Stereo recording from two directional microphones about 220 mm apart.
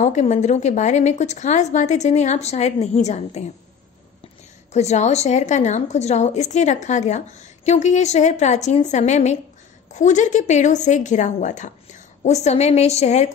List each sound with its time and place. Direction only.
0.0 s a woman's voice: 30° left (ahead or behind)
4.7 s a woman's voice: 30° left (ahead or behind)